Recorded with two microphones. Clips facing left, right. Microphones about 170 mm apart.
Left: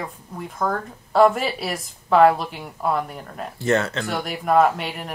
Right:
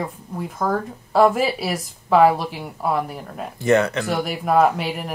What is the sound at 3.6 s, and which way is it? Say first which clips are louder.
Speech: right 4 dB; 15° right (ahead or behind).